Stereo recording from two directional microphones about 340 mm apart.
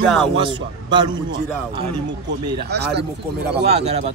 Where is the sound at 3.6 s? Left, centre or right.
Centre.